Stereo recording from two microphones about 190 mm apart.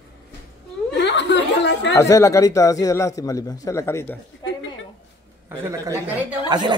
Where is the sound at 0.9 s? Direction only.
65° left (ahead or behind).